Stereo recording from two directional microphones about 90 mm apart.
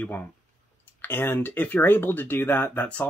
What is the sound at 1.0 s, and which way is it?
Speech, 25° left (ahead or behind).